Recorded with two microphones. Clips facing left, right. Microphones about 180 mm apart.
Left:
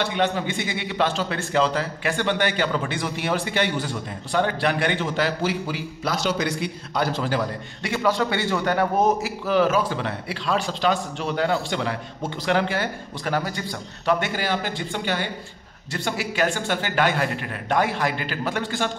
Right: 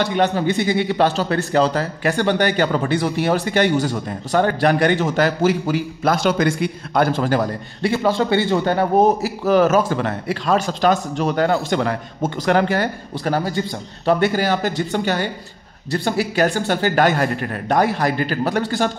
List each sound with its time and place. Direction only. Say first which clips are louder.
0.0 s speech: right 5 dB; 40° right (ahead or behind)
7.8 s a man's voice: right 4 dB; 30° right (ahead or behind)